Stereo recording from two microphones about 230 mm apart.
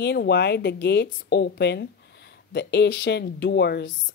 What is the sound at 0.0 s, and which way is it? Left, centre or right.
A woman's voice, left.